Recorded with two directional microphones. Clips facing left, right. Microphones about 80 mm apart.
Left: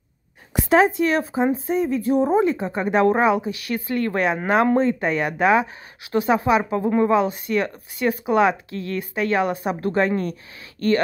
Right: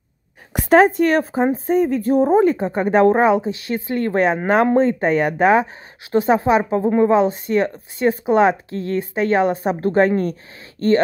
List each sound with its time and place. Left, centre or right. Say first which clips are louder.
0.5 s speech: right 4 dB; right